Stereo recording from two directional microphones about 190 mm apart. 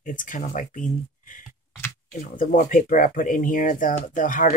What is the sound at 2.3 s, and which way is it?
Speech, 45° left (ahead or behind).